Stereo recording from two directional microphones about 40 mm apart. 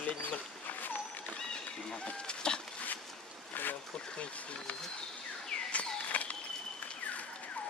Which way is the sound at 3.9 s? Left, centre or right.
Left.